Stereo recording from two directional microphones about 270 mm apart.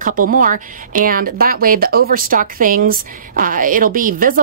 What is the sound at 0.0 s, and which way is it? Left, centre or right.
Speech, right.